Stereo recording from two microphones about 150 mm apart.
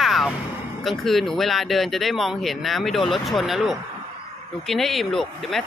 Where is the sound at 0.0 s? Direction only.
Centre (ahead or behind).